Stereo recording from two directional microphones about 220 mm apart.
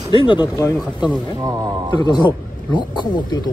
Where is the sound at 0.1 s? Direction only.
20° left (ahead or behind).